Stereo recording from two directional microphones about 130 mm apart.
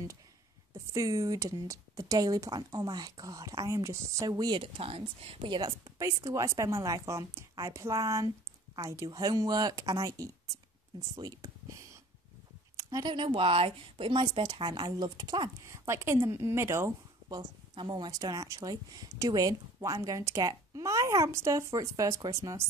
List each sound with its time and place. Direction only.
0.7 s a woman's voice: 25° right (ahead or behind)
4.6 s speech: 45° right (ahead or behind)
5.6 s a woman's voice: 25° right (ahead or behind)
12.7 s a sound: 25° right (ahead or behind)
13.1 s a woman's voice: 45° right (ahead or behind); by 22.7 s 25° right (ahead or behind)